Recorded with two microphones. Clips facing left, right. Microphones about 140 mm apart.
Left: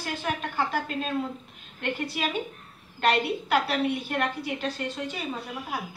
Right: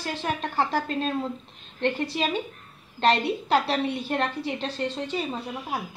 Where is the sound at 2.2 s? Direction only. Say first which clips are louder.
Right 2 dB; 30° right (ahead or behind).